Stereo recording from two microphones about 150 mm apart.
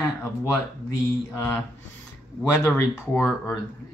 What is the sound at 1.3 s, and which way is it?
Speech, 15° left (ahead or behind).